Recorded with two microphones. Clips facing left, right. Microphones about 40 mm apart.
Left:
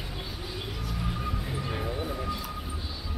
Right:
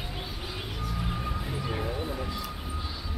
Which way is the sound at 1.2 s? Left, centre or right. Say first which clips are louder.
Even; centre.